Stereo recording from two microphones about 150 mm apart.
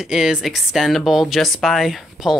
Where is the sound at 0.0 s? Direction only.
5° right (ahead or behind).